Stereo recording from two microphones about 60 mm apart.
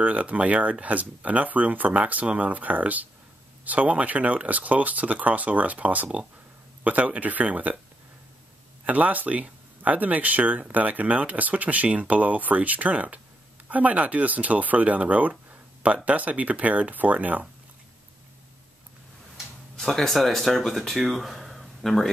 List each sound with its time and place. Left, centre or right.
0.0 s speech: right
8.8 s speech: right
19.8 s speech: centre